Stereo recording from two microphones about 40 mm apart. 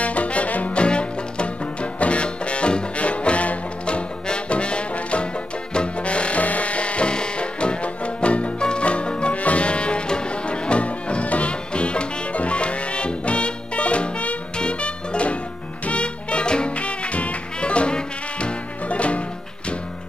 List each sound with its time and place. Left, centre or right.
0.0 s music: left